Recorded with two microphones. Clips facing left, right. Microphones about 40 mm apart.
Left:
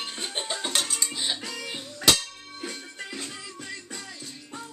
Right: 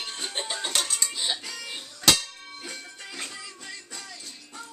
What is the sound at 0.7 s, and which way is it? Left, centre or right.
Music, centre.